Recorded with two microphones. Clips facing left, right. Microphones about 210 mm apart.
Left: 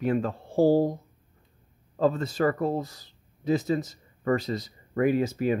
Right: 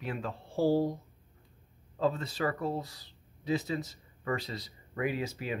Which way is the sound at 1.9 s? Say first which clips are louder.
Left 6 dB; 45° left (ahead or behind).